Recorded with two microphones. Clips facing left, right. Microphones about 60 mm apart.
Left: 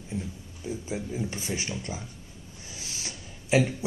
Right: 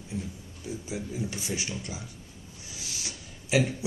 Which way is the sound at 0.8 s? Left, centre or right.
Left.